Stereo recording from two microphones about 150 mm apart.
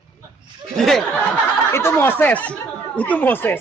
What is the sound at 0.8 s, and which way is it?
Speech, centre (ahead or behind).